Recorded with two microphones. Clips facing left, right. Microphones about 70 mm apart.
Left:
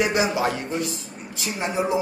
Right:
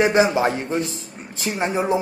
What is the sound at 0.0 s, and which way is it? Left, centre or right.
A man's voice, right.